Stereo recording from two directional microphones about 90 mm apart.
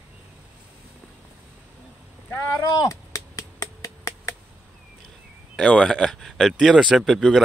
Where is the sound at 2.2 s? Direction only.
20° left (ahead or behind).